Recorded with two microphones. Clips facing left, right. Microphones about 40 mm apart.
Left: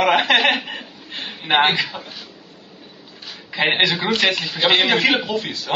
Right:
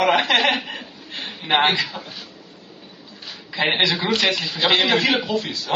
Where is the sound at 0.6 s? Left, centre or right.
Centre.